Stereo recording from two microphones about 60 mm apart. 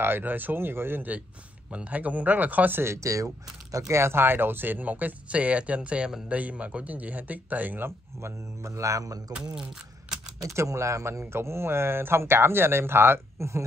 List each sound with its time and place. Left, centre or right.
0.0 s speech: right
2.8 s speech: right
8.2 s a man's voice: right
10.4 s a man's voice: right
11.3 s speech: right